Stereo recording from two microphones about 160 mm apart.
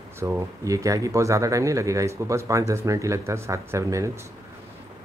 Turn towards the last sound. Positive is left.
turn(degrees=-20)  # may be behind; listen again after turning